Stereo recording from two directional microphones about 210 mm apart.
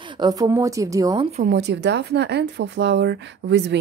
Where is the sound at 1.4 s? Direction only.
50° right (ahead or behind).